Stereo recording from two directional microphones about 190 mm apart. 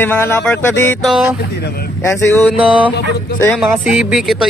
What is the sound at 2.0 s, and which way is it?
Speech, 15° left (ahead or behind).